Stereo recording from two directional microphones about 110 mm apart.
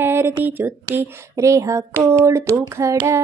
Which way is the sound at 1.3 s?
30° right (ahead or behind).